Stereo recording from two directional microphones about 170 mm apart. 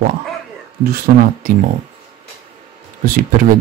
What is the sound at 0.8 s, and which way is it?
Speech, 65° right (ahead or behind).